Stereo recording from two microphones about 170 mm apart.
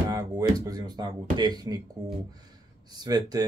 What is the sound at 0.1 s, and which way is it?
Speech, 20° right (ahead or behind).